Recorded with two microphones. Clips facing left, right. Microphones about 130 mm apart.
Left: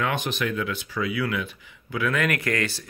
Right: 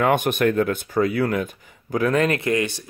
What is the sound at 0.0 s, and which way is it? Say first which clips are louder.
Speech: right 8 dB; 55° right (ahead or behind).